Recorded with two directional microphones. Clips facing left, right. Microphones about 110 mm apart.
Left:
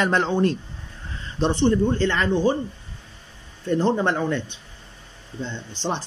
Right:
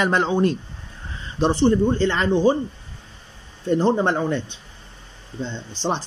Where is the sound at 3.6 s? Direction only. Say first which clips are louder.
Right 2 dB; 20° right (ahead or behind).